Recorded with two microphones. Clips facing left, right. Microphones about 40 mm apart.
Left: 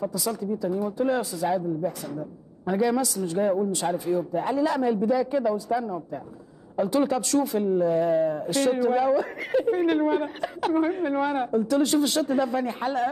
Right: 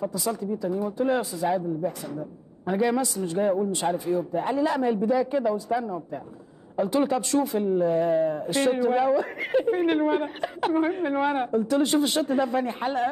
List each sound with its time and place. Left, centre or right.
0.1 s speech: centre
0.9 s speech: right
1.4 s speech: centre
3.8 s speech: centre